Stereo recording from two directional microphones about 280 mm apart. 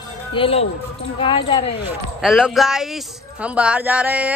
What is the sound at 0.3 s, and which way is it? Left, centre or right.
Speech, centre.